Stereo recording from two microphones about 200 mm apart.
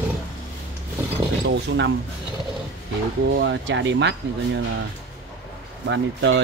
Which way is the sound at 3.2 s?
65° right (ahead or behind).